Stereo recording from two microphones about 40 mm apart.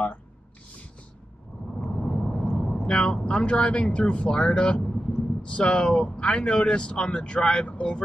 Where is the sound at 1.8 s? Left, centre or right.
Centre.